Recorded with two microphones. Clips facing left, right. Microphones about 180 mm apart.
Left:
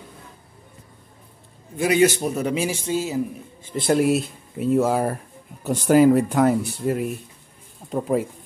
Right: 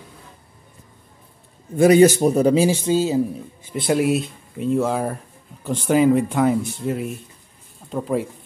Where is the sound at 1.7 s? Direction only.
45° right (ahead or behind).